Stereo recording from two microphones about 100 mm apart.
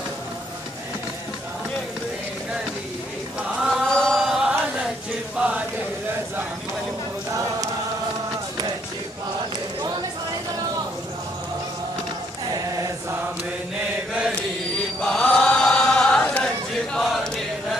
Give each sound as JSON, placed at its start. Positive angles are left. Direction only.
{"t": 3.6, "sound": "chant", "side_deg": 5}
{"t": 12.4, "sound": "choir", "side_deg": -35}
{"t": 15.0, "sound": "chant", "side_deg": 5}